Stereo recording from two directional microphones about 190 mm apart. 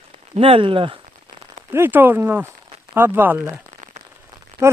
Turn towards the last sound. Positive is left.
turn(degrees=-15)  # may be behind; listen again after turning